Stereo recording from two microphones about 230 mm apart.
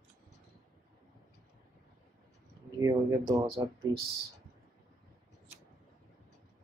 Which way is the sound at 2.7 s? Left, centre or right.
Centre.